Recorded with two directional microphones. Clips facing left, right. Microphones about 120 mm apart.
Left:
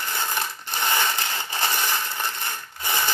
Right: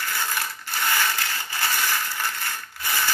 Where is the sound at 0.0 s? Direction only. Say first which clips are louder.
Left 1 dB; 25° left (ahead or behind).